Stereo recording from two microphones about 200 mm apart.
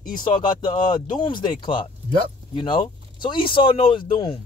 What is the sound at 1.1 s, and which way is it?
Speech, 20° left (ahead or behind).